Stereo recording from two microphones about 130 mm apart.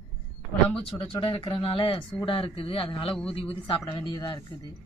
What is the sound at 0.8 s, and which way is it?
Speech, 45° left (ahead or behind).